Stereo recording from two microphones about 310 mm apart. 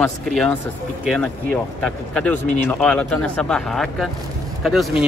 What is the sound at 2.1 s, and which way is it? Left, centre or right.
Speech, centre.